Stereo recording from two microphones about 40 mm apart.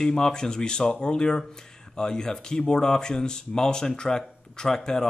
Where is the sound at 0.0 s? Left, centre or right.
Centre.